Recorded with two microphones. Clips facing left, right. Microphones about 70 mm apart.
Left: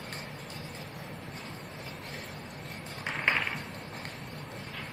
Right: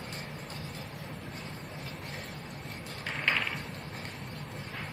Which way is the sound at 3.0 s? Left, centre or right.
Left.